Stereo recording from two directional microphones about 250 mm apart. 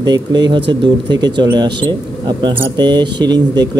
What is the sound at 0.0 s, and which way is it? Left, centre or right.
Speech, centre.